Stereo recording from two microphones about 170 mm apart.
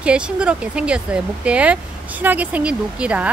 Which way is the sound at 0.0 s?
5° right (ahead or behind).